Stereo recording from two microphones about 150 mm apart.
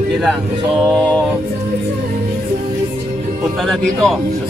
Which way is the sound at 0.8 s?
5° left (ahead or behind).